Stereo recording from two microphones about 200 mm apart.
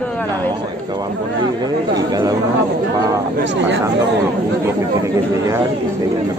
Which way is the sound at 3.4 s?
60° right (ahead or behind).